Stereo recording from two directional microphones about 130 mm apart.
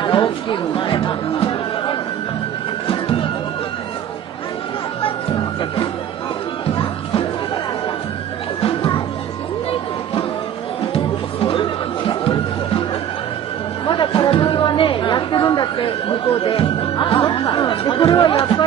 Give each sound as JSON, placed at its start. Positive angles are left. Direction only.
{"t": 0.0, "sound": "speech", "side_deg": 35}
{"t": 2.9, "sound": "music", "side_deg": 40}
{"t": 6.6, "sound": "music", "side_deg": 40}
{"t": 8.5, "sound": "music", "side_deg": 45}
{"t": 11.3, "sound": "music", "side_deg": 40}
{"t": 13.8, "sound": "music", "side_deg": 40}